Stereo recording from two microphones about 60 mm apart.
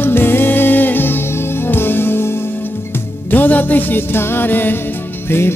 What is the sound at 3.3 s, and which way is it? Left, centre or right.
Music, left.